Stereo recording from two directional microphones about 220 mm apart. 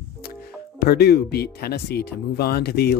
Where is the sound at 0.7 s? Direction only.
45° left (ahead or behind).